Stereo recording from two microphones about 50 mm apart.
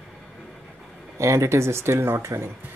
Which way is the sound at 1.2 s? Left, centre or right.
Right.